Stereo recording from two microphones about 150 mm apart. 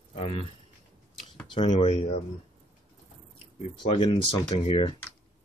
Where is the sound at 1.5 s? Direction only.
35° left (ahead or behind).